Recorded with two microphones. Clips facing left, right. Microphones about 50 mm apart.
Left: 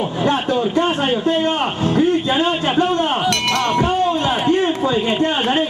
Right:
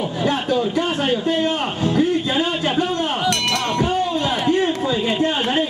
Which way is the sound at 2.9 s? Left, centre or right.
Left.